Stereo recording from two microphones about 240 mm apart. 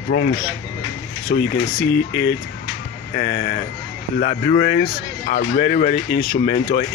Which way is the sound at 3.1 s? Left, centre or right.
Left.